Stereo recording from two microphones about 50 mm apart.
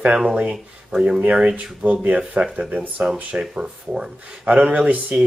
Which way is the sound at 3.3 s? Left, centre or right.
Centre.